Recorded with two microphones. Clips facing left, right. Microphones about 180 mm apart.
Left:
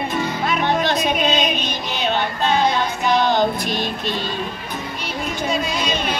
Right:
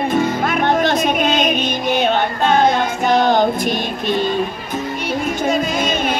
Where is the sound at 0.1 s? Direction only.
50° right (ahead or behind).